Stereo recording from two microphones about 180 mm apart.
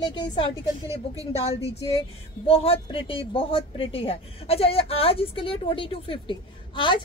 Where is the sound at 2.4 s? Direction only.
30° left (ahead or behind).